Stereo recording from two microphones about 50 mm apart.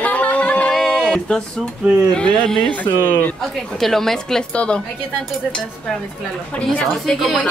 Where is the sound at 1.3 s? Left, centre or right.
Centre.